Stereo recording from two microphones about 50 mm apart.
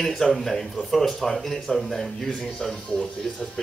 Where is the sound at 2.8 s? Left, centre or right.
Centre.